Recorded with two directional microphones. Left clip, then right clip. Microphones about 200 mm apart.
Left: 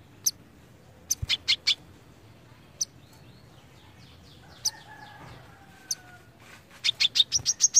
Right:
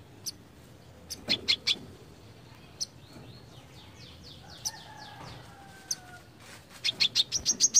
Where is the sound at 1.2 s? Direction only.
10° left (ahead or behind).